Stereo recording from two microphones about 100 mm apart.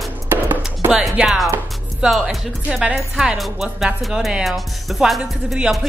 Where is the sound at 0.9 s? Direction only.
5° right (ahead or behind).